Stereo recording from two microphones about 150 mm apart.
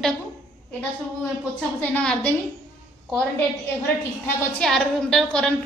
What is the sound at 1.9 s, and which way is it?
Speech, 5° left (ahead or behind).